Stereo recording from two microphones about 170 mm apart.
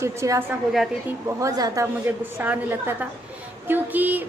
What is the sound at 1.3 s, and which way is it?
Speech, 20° right (ahead or behind).